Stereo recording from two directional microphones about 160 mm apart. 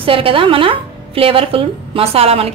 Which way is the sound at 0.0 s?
35° right (ahead or behind).